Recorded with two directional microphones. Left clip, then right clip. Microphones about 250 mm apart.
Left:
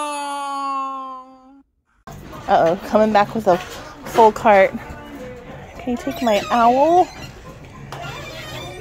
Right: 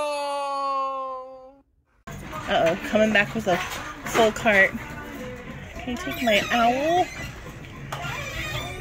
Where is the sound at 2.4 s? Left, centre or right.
Left.